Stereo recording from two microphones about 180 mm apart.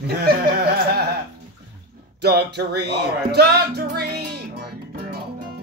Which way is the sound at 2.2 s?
65° right (ahead or behind).